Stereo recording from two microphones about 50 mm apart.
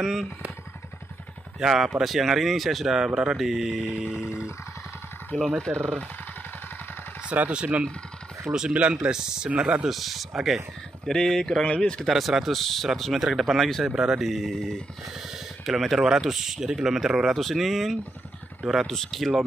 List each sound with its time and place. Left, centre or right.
0.0 s speech: centre
1.6 s speech: centre
5.3 s speech: centre
5.7 s speech: right
7.2 s speech: right
8.5 s speech: centre
9.8 s speech: centre
11.1 s speech: centre
11.6 s speech: left
12.1 s speech: centre
13.9 s speech: centre
15.3 s speech: centre